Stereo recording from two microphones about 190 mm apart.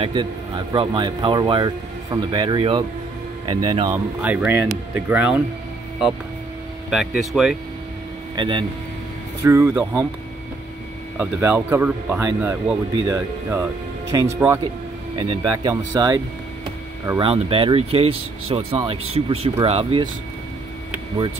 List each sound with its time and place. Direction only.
0.0 s a man's voice: 25° right (ahead or behind)
3.9 s speech: 10° right (ahead or behind)
6.9 s speech: 5° right (ahead or behind)
8.4 s a man's voice: 25° right (ahead or behind)
11.1 s speech: 10° right (ahead or behind)
15.1 s a man's voice: 25° right (ahead or behind)
17.2 s a man's voice: 30° right (ahead or behind)